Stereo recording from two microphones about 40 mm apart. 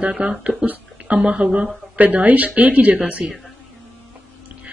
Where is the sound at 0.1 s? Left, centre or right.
Right.